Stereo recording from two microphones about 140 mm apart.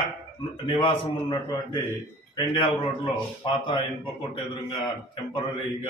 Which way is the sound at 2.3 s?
35° left (ahead or behind).